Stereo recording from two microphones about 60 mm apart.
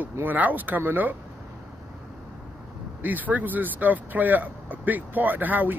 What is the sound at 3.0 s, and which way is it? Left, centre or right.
Speech, right.